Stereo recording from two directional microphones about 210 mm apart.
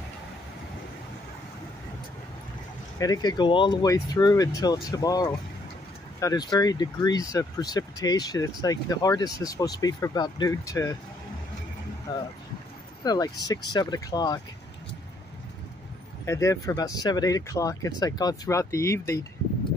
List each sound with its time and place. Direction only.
3.0 s speech: 20° left (ahead or behind)
12.1 s speech: 20° left (ahead or behind)
16.3 s speech: 15° left (ahead or behind)